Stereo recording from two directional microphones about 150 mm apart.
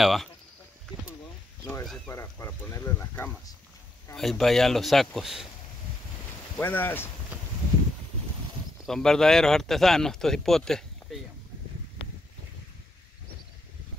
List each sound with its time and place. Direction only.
0.0 s speech: centre (ahead or behind)
1.6 s a sound: 20° left (ahead or behind)
2.0 s speech: 15° left (ahead or behind)
4.1 s speech: centre (ahead or behind)
6.6 s speech: 15° left (ahead or behind)
8.8 s speech: 5° left (ahead or behind)